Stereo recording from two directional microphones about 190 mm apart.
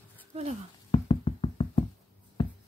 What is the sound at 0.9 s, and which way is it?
Knock, 30° left (ahead or behind).